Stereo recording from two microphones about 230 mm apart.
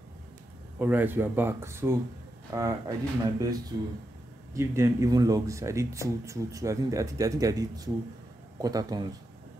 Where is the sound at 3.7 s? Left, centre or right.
Centre.